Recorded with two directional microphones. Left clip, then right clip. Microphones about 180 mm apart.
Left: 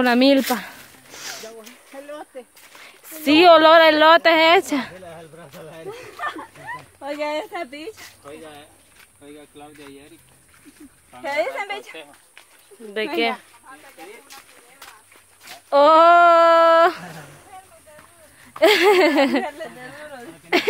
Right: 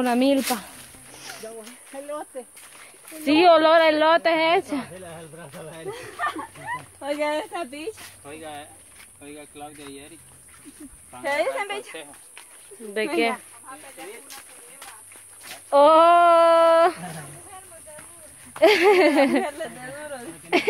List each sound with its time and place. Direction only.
0.0 s speech: 40° left (ahead or behind)
0.6 s a sound: 45° left (ahead or behind)
3.2 s speech: 35° left (ahead or behind)
5.0 s speech: 10° left (ahead or behind)
11.2 s speech: 45° left (ahead or behind)
12.9 s speech: 15° left (ahead or behind)
15.7 s female singing: 25° left (ahead or behind)
18.6 s female singing: 20° left (ahead or behind)